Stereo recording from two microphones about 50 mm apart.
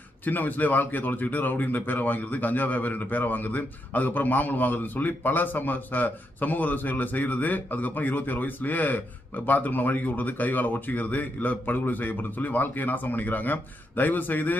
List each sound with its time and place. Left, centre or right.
0.2 s speech: left